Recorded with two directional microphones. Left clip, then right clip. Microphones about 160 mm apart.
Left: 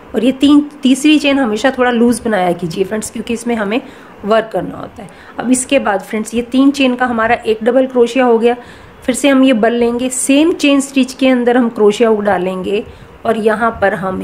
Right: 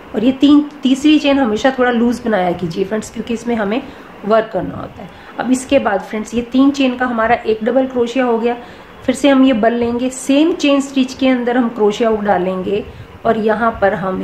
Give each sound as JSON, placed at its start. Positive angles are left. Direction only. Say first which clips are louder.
{"t": 0.1, "sound": "a woman's voice", "louder": "left 1 dB", "side_deg": 55}